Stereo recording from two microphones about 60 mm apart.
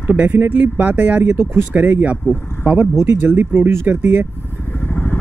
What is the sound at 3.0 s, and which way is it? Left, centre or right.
Speech, right.